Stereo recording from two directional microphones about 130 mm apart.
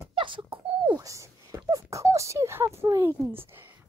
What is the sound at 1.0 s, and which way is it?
Speech, 25° right (ahead or behind).